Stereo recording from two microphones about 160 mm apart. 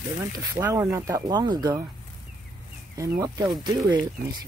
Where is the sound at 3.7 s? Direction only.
25° right (ahead or behind).